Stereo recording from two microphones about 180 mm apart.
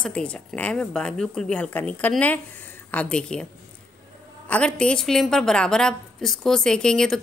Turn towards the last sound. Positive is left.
turn(degrees=5)  # may be behind; listen again after turning